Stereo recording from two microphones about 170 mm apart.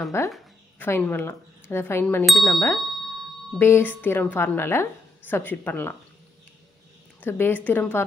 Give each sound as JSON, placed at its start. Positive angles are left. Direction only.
{"t": 0.2, "sound": "a woman's voice", "side_deg": 15}
{"t": 2.2, "sound": "speech", "side_deg": 0}
{"t": 3.5, "sound": "a woman's voice", "side_deg": 15}
{"t": 7.2, "sound": "a woman's voice", "side_deg": 15}